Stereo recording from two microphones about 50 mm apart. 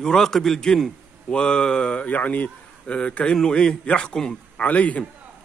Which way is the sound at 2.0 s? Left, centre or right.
Left.